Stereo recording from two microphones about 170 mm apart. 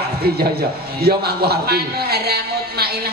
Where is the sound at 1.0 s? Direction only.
65° right (ahead or behind).